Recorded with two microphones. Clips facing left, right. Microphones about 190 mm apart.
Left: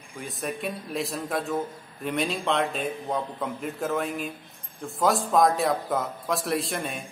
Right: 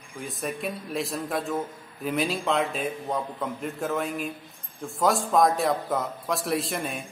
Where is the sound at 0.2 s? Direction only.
Centre (ahead or behind).